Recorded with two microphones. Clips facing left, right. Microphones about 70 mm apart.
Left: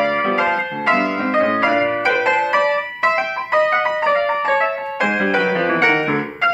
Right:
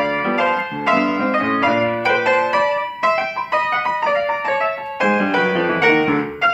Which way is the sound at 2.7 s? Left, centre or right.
Left.